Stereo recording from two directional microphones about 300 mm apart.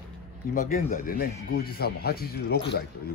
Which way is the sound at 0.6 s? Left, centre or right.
Left.